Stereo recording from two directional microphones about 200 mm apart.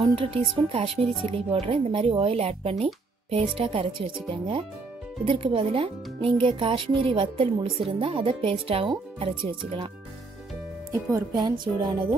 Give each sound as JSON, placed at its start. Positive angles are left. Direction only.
{"t": 0.0, "sound": "speech", "side_deg": -25}
{"t": 11.1, "sound": "speech", "side_deg": -20}